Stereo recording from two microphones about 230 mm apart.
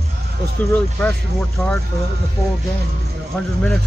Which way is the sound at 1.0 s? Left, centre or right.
Centre.